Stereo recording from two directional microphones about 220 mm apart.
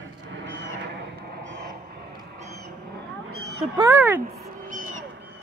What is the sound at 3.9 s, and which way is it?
Speech, 10° right (ahead or behind).